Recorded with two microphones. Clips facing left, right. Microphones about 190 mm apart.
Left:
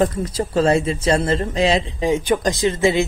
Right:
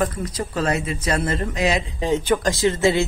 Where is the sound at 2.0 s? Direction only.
10° left (ahead or behind).